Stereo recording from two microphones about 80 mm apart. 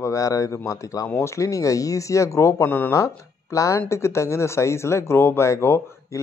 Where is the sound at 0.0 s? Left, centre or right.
Left.